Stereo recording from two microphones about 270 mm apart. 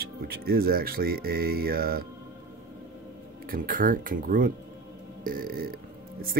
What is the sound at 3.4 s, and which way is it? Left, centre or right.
Speech, right.